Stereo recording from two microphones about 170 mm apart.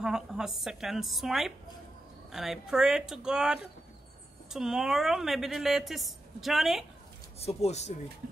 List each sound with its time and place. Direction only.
0.0 s a woman's voice: 5° right (ahead or behind)
7.3 s speech: 40° left (ahead or behind)